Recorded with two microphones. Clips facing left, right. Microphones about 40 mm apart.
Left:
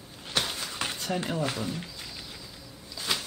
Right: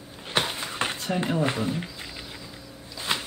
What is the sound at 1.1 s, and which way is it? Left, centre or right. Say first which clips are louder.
Speech: right 4 dB; centre.